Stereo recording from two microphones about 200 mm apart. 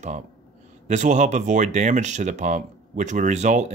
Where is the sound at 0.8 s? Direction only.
35° right (ahead or behind).